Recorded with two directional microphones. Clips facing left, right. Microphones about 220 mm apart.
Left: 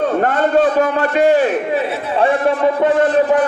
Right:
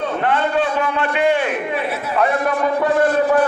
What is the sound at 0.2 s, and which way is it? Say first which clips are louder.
A man's voice: left 3 dB; 45° left (ahead or behind).